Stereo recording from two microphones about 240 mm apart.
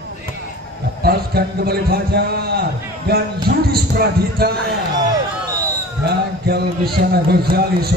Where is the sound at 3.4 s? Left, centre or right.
Right.